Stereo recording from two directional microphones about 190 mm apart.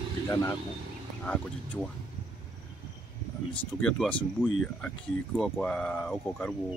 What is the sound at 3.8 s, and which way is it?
Speech, 5° left (ahead or behind).